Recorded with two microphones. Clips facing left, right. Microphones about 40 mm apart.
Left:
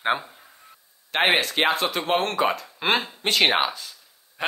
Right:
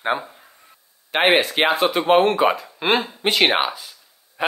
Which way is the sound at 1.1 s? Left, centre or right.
Centre.